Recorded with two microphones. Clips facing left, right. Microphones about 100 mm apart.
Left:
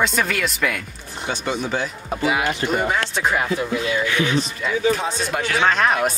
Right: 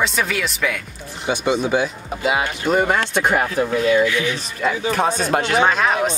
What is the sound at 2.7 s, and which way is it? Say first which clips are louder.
Speech: right 4 dB; 55° right (ahead or behind).